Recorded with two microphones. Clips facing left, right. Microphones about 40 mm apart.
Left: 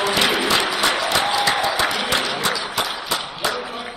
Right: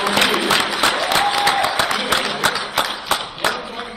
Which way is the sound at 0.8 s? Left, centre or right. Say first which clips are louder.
Right 2 dB; right.